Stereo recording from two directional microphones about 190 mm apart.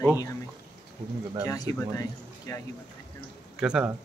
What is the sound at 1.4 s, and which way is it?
Speech, 20° left (ahead or behind).